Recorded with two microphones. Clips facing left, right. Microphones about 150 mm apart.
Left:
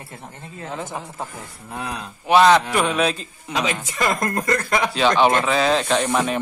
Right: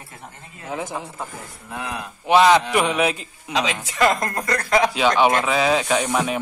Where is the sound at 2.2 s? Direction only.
15° right (ahead or behind).